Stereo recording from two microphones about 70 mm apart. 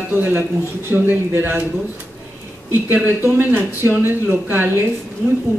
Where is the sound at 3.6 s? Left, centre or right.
Right.